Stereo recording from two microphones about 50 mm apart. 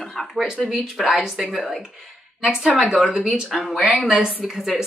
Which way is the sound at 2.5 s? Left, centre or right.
Centre.